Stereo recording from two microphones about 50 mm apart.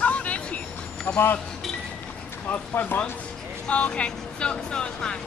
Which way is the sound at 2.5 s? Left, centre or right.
Left.